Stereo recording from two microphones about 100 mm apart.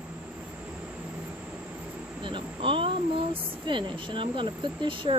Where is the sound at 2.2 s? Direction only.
60° right (ahead or behind).